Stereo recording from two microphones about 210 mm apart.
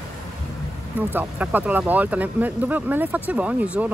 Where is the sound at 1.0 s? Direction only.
10° right (ahead or behind).